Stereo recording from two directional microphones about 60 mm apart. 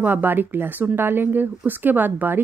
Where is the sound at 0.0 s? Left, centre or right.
Right.